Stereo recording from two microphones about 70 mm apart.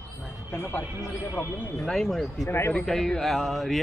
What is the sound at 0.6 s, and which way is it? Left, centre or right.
Speech, left.